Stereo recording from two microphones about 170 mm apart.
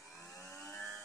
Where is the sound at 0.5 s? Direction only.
15° left (ahead or behind).